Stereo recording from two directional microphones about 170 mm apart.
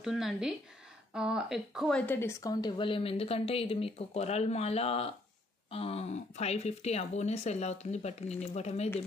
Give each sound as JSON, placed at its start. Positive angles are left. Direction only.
{"t": 0.0, "sound": "speech", "side_deg": 0}